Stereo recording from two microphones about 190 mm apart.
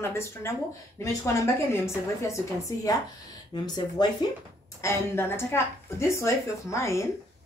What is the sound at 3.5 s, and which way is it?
Speech, 20° left (ahead or behind).